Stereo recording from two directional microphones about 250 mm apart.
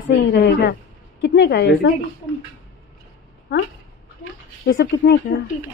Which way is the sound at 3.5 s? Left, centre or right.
Left.